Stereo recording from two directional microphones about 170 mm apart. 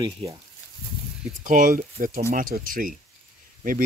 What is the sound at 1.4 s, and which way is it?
Speech, 50° right (ahead or behind).